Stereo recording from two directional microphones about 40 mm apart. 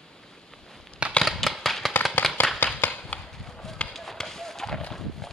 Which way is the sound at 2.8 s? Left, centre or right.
Left.